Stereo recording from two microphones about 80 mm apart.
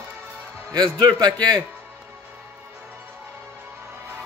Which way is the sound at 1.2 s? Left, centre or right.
Right.